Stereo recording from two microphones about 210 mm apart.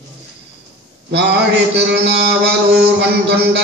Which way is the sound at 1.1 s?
55° right (ahead or behind).